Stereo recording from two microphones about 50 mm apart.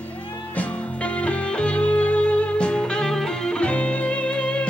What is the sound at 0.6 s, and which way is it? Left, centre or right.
Music, left.